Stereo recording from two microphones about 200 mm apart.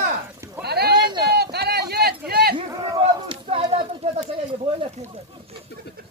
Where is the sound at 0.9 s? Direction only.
20° right (ahead or behind).